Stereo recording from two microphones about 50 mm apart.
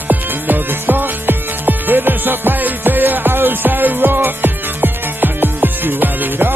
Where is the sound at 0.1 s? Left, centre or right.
Right.